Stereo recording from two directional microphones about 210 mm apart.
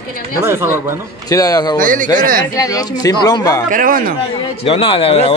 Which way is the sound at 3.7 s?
40° right (ahead or behind).